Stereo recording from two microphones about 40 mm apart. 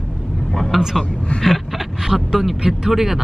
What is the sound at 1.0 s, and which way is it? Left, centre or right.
A man's voice, centre.